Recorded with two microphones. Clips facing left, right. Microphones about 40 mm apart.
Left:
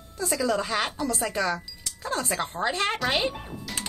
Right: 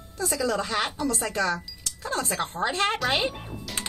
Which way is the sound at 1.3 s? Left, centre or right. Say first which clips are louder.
Right 1 dB; centre.